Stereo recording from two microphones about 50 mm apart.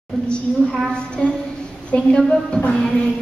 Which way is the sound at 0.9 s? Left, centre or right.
Centre.